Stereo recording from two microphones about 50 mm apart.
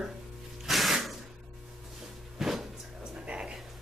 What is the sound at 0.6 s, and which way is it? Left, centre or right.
Music, centre.